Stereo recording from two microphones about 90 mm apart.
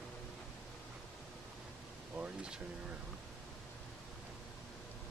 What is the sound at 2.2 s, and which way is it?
Speech, 10° right (ahead or behind).